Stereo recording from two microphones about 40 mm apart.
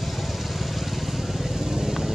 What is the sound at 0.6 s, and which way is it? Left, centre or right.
Vehicle, centre.